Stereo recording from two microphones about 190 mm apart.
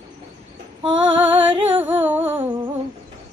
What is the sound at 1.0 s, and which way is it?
Female singing, 10° right (ahead or behind).